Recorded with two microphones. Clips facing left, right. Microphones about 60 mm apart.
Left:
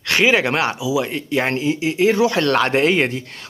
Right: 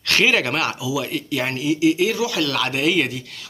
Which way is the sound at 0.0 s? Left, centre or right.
Left.